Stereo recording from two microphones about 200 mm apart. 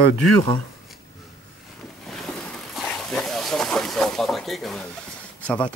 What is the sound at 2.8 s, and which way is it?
Dog, 5° left (ahead or behind).